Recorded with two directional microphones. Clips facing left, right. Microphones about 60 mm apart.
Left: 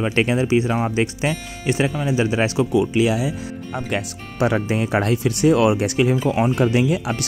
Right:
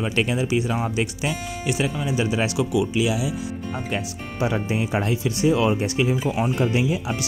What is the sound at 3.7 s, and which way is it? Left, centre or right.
Speech, left.